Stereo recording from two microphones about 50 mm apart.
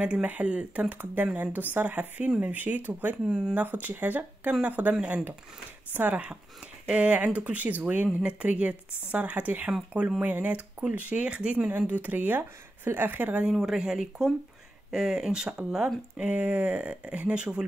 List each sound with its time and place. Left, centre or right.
0.0 s speech: right
3.3 s speech: centre
3.6 s speech: right
6.9 s speech: right
11.2 s speech: centre
11.5 s speech: right
13.5 s speech: centre
16.2 s speech: right